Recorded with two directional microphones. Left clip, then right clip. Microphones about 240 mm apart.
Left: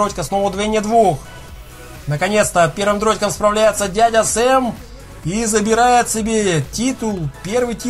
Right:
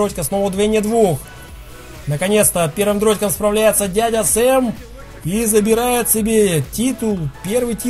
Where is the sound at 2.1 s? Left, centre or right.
Right.